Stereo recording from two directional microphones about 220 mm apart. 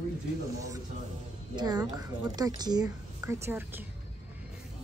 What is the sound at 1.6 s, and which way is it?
A woman's voice, 15° right (ahead or behind).